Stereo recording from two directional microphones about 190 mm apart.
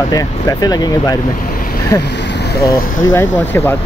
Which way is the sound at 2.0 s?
65° left (ahead or behind).